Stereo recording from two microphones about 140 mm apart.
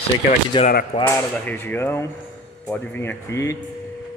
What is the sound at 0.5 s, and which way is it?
Speech, 35° left (ahead or behind).